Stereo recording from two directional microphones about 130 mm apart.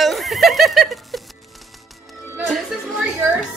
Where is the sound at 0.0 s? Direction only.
Centre (ahead or behind).